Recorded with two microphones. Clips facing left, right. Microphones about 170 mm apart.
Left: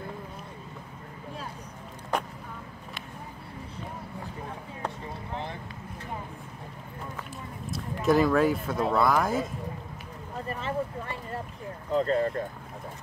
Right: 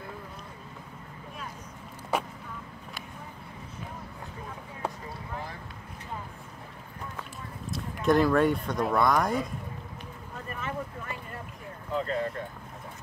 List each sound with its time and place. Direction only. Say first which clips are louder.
2.1 s vehicle: even; 5° right (ahead or behind)
5.3 s boat: left 3 dB; 25° left (ahead or behind)
7.7 s speech: even; centre (ahead or behind)
10.5 s vehicle: left 4 dB; 30° left (ahead or behind)
11.9 s speech: left 5 dB; 35° left (ahead or behind)